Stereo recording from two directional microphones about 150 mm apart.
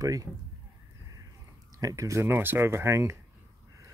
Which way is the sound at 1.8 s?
25° right (ahead or behind).